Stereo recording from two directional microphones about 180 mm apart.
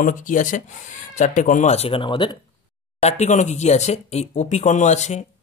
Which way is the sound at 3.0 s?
40° left (ahead or behind).